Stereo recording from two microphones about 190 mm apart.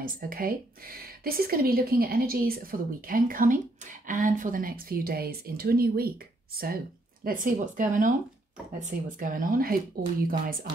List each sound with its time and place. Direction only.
0.0 s speech: 45° right (ahead or behind)